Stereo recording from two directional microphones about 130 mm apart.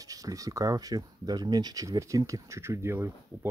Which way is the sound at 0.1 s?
25° right (ahead or behind).